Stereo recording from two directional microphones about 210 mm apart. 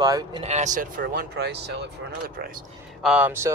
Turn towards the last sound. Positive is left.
turn(degrees=-5)  # may be behind; listen again after turning